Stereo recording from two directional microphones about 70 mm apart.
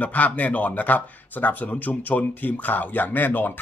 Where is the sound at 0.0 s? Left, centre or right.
Left.